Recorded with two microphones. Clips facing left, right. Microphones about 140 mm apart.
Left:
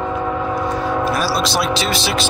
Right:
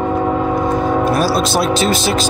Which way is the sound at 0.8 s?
20° right (ahead or behind).